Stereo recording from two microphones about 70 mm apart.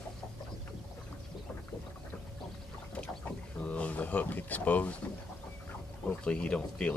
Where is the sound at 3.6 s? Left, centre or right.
Left.